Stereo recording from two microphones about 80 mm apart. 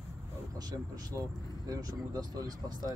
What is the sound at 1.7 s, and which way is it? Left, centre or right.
Speech, right.